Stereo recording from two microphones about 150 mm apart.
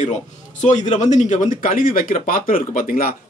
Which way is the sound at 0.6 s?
55° left (ahead or behind).